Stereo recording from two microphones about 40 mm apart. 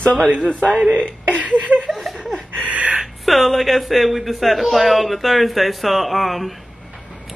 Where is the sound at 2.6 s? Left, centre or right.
Right.